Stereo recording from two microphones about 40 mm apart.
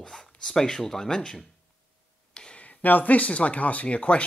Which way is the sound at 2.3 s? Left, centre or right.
Left.